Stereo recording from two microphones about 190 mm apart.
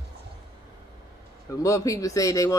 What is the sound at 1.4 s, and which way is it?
Speech, 15° left (ahead or behind).